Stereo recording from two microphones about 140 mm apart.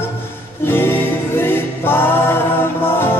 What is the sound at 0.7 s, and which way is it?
Music, 15° left (ahead or behind).